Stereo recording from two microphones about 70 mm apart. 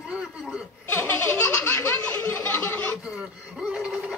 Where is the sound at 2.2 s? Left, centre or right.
Left.